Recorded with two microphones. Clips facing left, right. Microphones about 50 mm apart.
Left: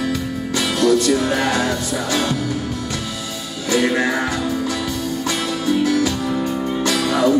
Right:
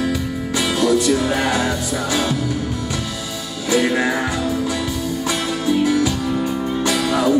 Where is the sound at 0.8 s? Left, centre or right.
Centre.